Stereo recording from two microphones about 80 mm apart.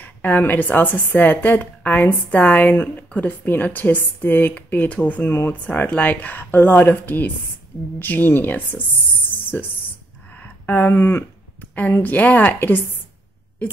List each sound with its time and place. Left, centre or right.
0.0 s a woman's voice: centre